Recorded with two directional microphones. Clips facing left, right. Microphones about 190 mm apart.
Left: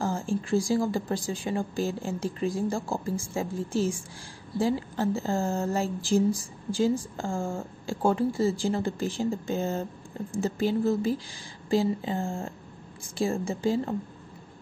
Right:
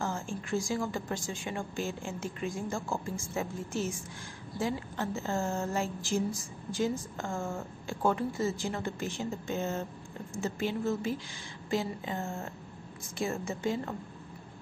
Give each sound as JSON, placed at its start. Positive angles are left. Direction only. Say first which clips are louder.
{"t": 0.0, "sound": "a woman's voice", "louder": "left 6 dB", "side_deg": 35}